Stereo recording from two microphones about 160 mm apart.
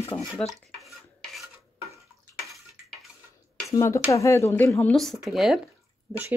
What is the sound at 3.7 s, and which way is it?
Speech, 20° left (ahead or behind).